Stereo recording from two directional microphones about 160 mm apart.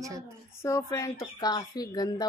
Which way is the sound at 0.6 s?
20° left (ahead or behind).